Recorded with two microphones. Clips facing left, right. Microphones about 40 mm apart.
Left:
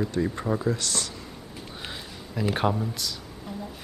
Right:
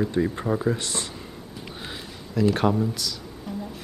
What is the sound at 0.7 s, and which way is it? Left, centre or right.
Speech, right.